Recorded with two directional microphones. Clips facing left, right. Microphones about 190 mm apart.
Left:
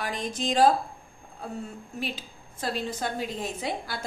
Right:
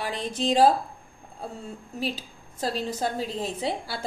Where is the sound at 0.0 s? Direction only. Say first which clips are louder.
Right 2 dB; 30° right (ahead or behind).